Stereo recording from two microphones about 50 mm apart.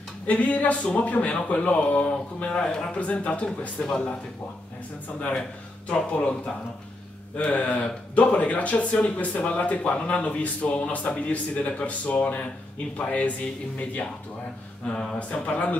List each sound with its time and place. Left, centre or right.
0.3 s speech: left
5.9 s speech: left
7.5 s speech: left
15.1 s speech: left